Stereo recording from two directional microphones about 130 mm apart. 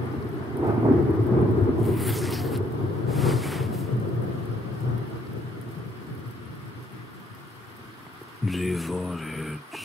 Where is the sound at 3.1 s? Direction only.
Centre (ahead or behind).